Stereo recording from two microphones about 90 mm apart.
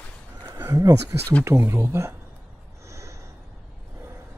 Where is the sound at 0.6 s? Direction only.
35° right (ahead or behind).